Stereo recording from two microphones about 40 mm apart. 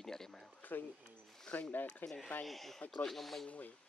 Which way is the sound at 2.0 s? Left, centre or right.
Left.